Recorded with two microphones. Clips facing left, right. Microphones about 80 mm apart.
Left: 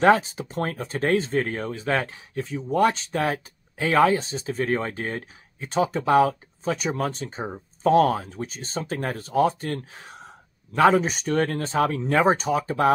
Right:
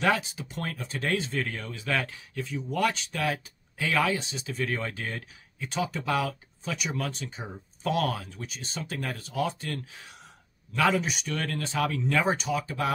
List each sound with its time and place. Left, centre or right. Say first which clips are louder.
0.0 s speech: left 8 dB; left